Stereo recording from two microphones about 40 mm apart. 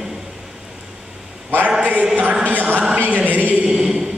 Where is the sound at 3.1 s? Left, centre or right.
Right.